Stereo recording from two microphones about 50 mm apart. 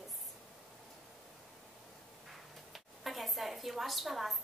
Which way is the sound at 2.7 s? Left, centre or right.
Centre.